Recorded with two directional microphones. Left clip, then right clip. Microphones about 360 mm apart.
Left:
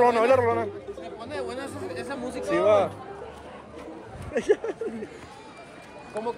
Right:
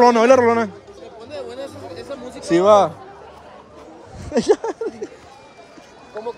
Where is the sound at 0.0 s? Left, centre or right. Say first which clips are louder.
Right 8 dB; right.